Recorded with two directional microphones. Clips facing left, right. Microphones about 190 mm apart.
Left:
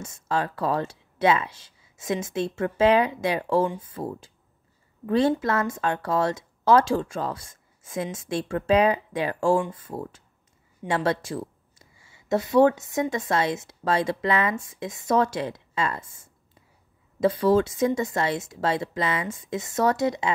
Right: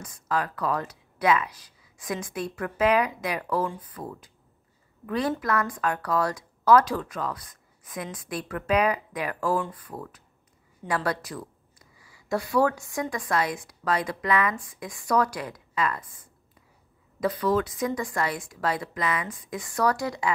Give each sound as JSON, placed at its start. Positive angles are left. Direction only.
{"t": 0.0, "sound": "a woman's voice", "side_deg": 25}